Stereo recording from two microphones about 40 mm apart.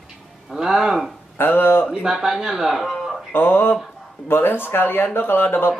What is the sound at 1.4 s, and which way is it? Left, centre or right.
Speech, left.